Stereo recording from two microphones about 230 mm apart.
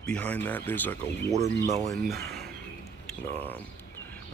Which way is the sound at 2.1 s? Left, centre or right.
Right.